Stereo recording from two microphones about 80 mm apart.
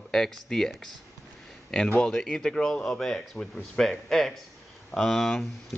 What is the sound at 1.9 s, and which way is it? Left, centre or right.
A man's voice, centre.